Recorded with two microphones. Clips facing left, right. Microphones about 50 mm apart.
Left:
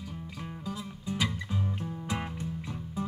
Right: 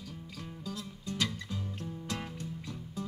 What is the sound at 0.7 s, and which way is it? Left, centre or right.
Music, centre.